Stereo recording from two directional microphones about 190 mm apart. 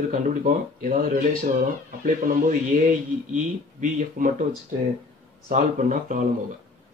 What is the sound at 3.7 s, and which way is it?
Speech, 45° right (ahead or behind).